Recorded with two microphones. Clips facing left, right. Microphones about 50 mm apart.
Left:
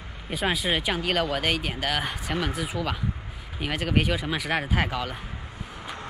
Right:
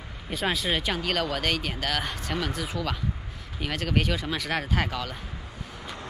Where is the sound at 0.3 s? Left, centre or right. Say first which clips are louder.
Left 1 dB; centre.